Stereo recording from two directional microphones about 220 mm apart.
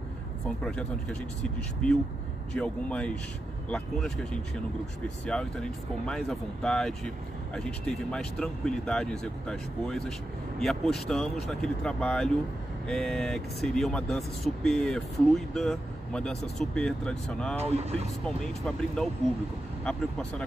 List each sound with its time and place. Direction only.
0.7 s speech: 5° left (ahead or behind)
17.6 s speech: 30° right (ahead or behind)
18.2 s speech: 5° left (ahead or behind)